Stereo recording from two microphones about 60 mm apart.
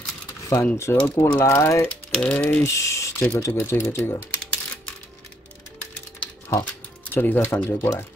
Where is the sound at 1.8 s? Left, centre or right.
Centre.